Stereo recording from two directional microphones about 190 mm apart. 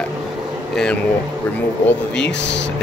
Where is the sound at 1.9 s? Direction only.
5° left (ahead or behind).